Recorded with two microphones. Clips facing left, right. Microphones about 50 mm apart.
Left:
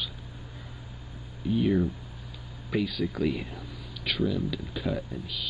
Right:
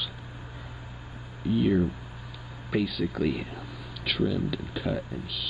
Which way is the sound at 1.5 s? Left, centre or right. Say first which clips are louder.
Right 1 dB; centre.